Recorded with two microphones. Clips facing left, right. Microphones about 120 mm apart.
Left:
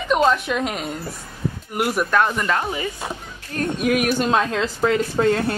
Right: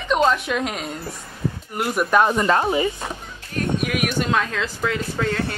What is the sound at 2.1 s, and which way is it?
Speech, 20° right (ahead or behind).